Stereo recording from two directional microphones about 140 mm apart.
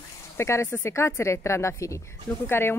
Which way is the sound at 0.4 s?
20° left (ahead or behind).